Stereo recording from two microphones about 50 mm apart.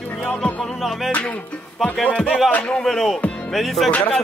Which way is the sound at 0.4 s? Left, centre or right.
Centre.